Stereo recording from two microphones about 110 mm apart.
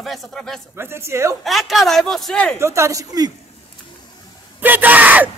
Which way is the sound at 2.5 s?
25° right (ahead or behind).